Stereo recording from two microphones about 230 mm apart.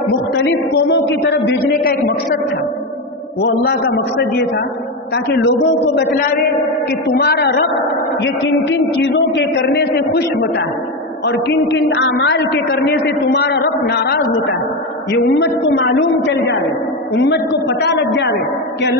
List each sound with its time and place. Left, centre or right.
0.4 s a man's voice: left
3.3 s a man's voice: left
7.1 s a man's voice: left
15.4 s a man's voice: left